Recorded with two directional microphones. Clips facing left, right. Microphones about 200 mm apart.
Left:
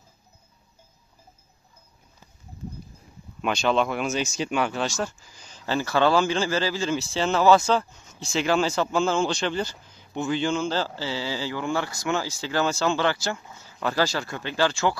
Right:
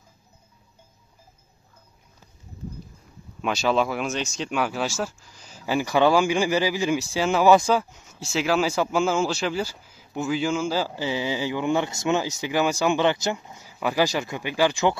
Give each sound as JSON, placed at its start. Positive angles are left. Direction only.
{"t": 3.3, "sound": "speech", "side_deg": 0}